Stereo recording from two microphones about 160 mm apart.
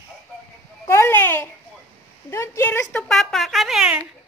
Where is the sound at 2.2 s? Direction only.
20° left (ahead or behind).